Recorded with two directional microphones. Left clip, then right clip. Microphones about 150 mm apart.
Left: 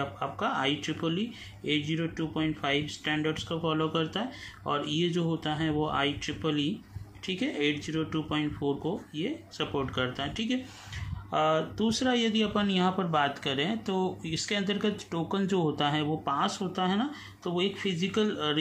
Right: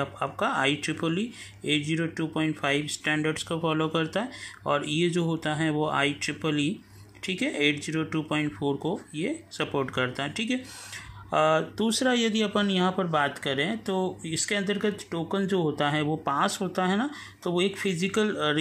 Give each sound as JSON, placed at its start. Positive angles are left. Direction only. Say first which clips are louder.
{"t": 0.0, "sound": "speech", "louder": "right 3 dB", "side_deg": -40}